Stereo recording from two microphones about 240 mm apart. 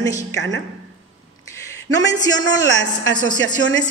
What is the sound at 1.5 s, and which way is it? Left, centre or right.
A man's voice, centre.